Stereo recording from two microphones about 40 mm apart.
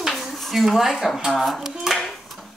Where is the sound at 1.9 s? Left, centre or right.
Centre.